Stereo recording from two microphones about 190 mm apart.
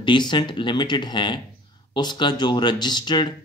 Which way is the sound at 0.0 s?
25° left (ahead or behind).